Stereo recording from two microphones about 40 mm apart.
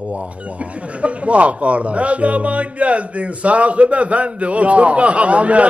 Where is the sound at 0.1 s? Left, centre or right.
Right.